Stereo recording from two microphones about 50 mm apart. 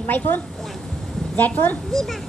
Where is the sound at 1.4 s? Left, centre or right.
Left.